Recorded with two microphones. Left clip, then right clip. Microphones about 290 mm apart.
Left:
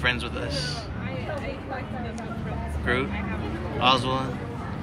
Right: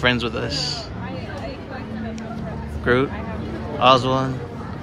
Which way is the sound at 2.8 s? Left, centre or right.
Centre.